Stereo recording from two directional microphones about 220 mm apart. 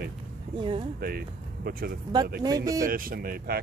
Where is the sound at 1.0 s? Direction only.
40° right (ahead or behind).